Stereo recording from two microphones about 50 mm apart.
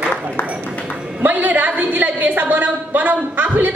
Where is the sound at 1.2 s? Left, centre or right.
Right.